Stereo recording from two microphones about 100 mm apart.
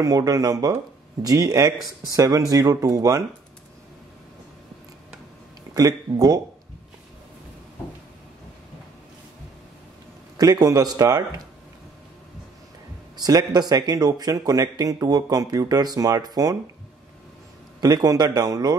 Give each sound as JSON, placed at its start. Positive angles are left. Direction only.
{"t": 0.0, "sound": "a man's voice", "side_deg": -40}
{"t": 5.8, "sound": "a man's voice", "side_deg": -40}
{"t": 10.3, "sound": "a man's voice", "side_deg": -40}
{"t": 13.1, "sound": "a man's voice", "side_deg": -40}
{"t": 17.7, "sound": "a man's voice", "side_deg": -40}